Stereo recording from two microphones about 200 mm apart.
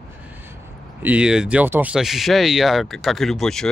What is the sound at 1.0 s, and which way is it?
Speech, 5° right (ahead or behind).